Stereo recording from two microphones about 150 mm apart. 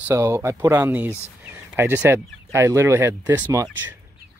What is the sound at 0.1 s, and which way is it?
Speech, 20° right (ahead or behind).